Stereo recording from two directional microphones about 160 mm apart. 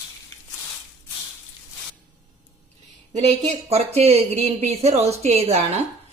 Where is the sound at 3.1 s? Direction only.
45° right (ahead or behind).